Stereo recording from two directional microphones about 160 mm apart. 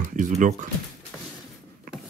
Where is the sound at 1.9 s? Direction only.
60° right (ahead or behind).